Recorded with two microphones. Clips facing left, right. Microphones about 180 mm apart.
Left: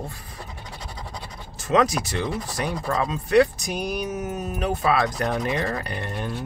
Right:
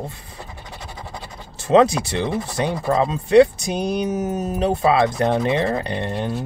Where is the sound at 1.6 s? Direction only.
30° right (ahead or behind).